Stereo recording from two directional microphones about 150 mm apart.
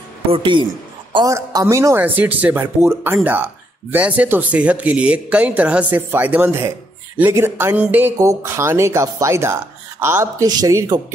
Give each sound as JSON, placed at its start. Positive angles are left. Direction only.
{"t": 0.3, "sound": "speech", "side_deg": -35}